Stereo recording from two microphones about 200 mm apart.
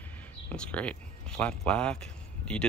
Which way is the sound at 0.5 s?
5° left (ahead or behind).